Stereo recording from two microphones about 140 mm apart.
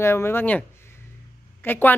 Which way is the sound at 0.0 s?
15° left (ahead or behind).